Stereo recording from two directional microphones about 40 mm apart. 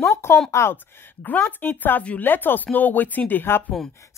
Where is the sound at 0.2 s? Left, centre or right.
Left.